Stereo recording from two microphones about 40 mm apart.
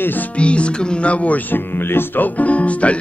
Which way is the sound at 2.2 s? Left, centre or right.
Left.